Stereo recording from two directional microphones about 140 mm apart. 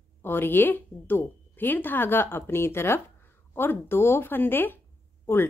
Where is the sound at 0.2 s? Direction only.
15° left (ahead or behind).